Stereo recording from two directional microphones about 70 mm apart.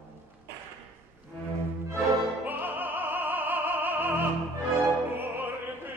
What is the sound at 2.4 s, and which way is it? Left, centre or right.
Music, right.